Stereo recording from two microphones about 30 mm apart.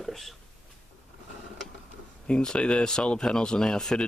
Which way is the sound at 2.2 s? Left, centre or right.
Left.